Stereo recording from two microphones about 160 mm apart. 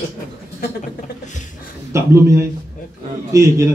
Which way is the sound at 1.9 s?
15° right (ahead or behind).